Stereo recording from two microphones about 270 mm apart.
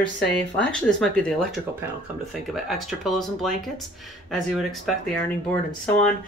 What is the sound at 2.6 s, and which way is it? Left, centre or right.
Speech, centre.